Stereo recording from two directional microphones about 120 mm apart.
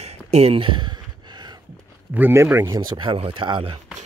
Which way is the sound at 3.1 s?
50° right (ahead or behind).